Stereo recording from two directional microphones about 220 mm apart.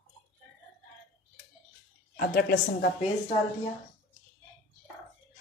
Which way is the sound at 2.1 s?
45° left (ahead or behind).